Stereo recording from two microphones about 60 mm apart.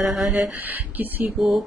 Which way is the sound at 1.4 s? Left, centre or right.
Centre.